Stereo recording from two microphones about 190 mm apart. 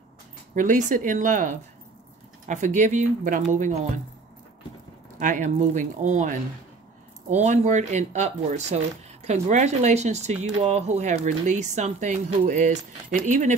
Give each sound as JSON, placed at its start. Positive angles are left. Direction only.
{"t": 0.6, "sound": "speech", "side_deg": -40}
{"t": 5.2, "sound": "speech", "side_deg": -40}